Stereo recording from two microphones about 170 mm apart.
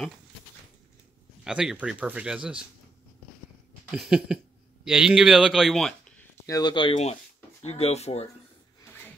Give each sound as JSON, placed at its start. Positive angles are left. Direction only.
{"t": 1.4, "sound": "speech", "side_deg": -5}
{"t": 3.9, "sound": "a man's voice", "side_deg": -5}
{"t": 6.4, "sound": "speech", "side_deg": 25}